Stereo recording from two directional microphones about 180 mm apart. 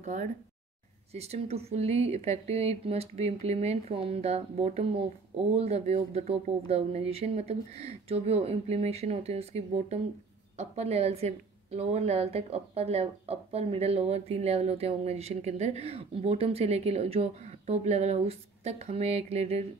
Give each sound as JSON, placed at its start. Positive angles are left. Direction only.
{"t": 0.0, "sound": "a woman's voice", "side_deg": -45}